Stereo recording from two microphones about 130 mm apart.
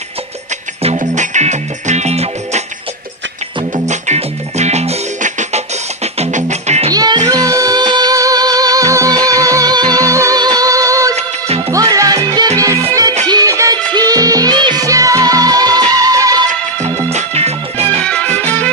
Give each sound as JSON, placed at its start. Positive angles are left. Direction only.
{"t": 0.9, "sound": "music", "side_deg": -70}
{"t": 3.8, "sound": "music", "side_deg": -60}
{"t": 6.9, "sound": "music", "side_deg": -30}
{"t": 11.1, "sound": "music", "side_deg": -50}
{"t": 11.7, "sound": "music", "side_deg": -25}
{"t": 17.1, "sound": "music", "side_deg": -55}
{"t": 18.0, "sound": "music", "side_deg": 10}